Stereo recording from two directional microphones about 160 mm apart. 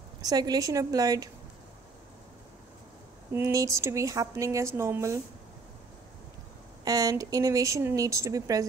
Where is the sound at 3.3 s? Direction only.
15° right (ahead or behind).